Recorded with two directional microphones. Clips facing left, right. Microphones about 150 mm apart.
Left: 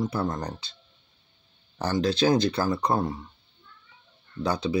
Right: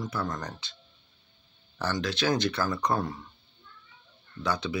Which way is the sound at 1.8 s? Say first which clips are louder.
Left 6 dB; 30° left (ahead or behind).